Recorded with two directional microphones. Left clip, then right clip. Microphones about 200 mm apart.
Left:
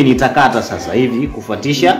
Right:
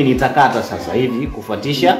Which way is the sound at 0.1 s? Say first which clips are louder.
Left 2 dB; 25° left (ahead or behind).